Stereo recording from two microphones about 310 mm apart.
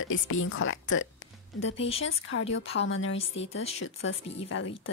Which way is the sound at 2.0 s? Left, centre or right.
Left.